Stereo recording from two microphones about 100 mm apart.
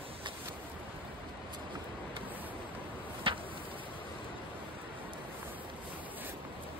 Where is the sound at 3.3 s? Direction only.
60° right (ahead or behind).